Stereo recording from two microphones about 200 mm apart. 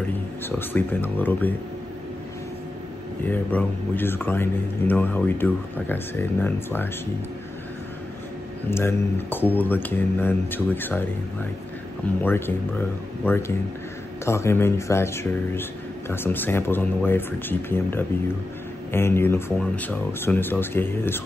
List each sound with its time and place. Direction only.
0.5 s speech: 10° left (ahead or behind)
3.3 s speech: 10° left (ahead or behind)
8.6 s speech: 10° left (ahead or behind)
12.2 s speech: 10° left (ahead or behind)